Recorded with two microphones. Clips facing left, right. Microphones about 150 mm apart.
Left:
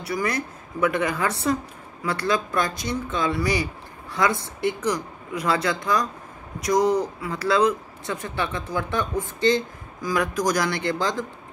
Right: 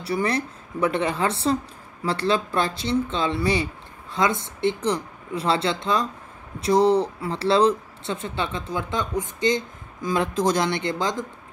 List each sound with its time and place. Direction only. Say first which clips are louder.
0.0 s speech: right 2 dB; 30° right (ahead or behind)